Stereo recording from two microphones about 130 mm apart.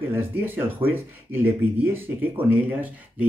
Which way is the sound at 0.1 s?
15° right (ahead or behind).